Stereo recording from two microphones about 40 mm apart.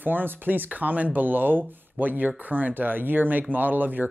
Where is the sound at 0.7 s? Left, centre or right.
Right.